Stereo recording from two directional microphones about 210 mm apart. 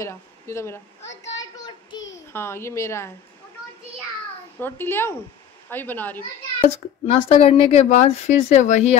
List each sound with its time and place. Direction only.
0.0 s a sound: 15° left (ahead or behind)
4.6 s speech: 10° left (ahead or behind)
6.6 s a woman's voice: 25° left (ahead or behind)